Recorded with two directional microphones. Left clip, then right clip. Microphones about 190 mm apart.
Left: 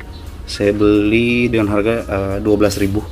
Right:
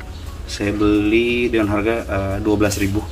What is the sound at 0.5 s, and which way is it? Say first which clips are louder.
Speech: left 5 dB; 35° left (ahead or behind).